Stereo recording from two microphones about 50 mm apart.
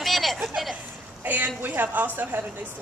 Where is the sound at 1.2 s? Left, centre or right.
Right.